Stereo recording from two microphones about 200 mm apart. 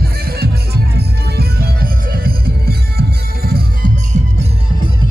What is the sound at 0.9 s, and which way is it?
Music, 50° right (ahead or behind).